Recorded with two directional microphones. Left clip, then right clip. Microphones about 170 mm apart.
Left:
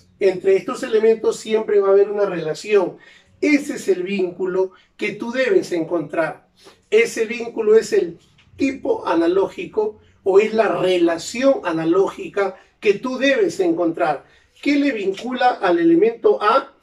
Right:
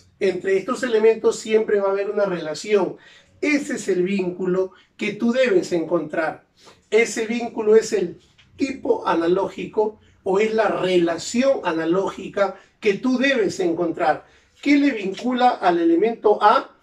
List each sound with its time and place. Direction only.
0.2 s speech: 5° left (ahead or behind)